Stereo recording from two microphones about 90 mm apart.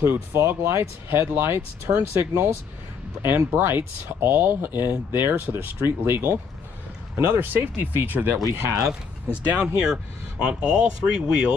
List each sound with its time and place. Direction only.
0.0 s speech: 25° right (ahead or behind)
8.4 s speech: 40° right (ahead or behind)
9.5 s speech: 10° right (ahead or behind)